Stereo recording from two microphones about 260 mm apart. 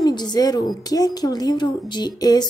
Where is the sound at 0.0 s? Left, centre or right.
Centre.